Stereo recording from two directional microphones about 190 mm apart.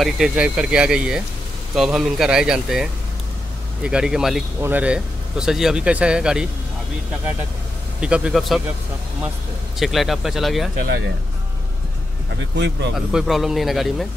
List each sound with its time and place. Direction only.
0.0 s speech: 5° right (ahead or behind)
8.0 s speech: 5° right (ahead or behind)
9.8 s speech: centre (ahead or behind)
12.5 s speech: 65° right (ahead or behind)
12.9 s speech: centre (ahead or behind)